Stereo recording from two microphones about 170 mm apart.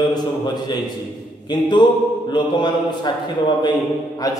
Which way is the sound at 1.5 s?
25° left (ahead or behind).